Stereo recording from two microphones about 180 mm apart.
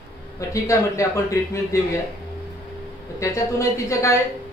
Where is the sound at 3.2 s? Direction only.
15° left (ahead or behind).